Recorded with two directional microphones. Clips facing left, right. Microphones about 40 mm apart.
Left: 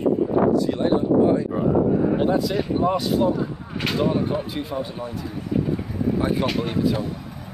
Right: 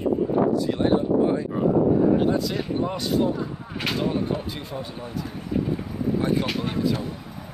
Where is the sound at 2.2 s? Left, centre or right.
Centre.